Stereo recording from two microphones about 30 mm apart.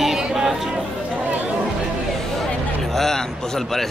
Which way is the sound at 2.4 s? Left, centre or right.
Centre.